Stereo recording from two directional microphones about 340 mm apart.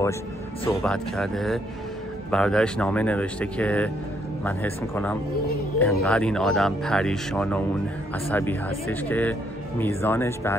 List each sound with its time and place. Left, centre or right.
0.7 s speech: centre